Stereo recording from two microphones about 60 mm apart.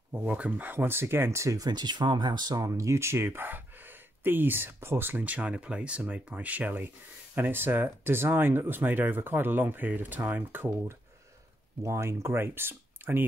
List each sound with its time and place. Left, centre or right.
0.1 s speech: right
2.5 s speech: right
11.8 s speech: right